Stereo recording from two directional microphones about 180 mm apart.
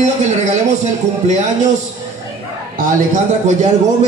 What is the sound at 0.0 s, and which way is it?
A man's voice, 40° right (ahead or behind).